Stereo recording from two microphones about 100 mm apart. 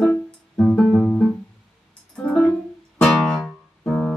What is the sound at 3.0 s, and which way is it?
Music, 5° left (ahead or behind).